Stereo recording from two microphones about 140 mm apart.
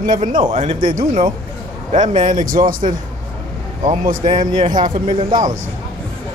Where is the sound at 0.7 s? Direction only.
35° right (ahead or behind).